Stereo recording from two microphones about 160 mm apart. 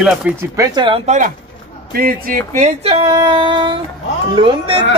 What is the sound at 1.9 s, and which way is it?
Speech, 70° right (ahead or behind).